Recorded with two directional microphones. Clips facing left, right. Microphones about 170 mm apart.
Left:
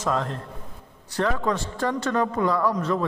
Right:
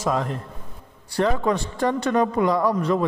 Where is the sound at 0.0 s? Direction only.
10° right (ahead or behind).